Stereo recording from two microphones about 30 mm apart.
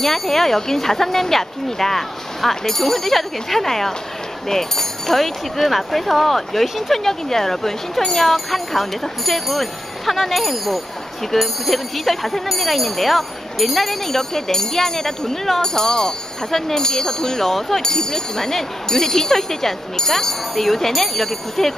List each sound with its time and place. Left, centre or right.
0.0 s speech: centre
17.4 s speech: centre
17.8 s speech: centre